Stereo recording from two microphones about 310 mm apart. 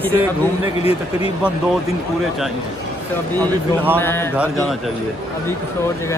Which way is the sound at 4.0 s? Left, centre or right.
Centre.